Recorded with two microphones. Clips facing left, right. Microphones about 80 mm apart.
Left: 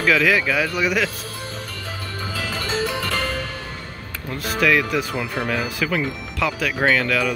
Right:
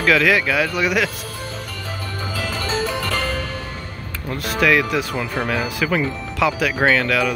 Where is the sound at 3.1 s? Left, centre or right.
Left.